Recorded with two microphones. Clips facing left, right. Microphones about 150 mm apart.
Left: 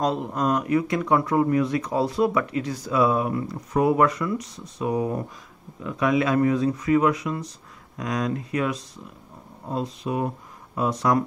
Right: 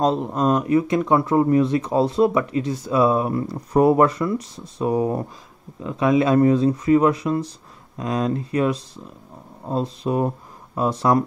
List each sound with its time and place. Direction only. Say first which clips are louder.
0.0 s speech: right 4 dB; 25° right (ahead or behind)